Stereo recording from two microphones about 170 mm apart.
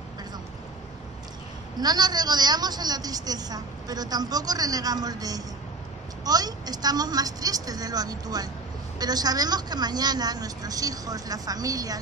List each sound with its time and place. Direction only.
1.8 s a woman's voice: 25° right (ahead or behind)